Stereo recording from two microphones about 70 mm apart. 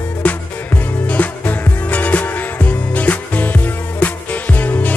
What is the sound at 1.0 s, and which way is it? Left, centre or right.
Music, left.